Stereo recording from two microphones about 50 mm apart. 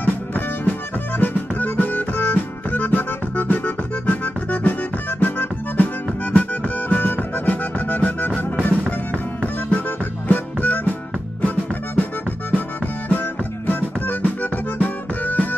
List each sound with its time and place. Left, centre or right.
0.0 s music: left
5.2 s accordion: left
6.2 s music: left